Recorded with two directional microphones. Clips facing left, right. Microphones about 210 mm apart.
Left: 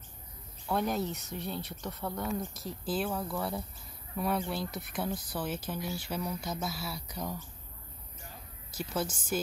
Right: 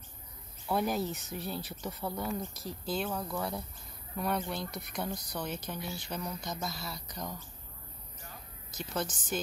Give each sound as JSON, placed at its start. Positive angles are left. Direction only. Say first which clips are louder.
{"t": 0.7, "sound": "speech", "louder": "even", "side_deg": 0}
{"t": 8.7, "sound": "speech", "louder": "left 2 dB", "side_deg": 10}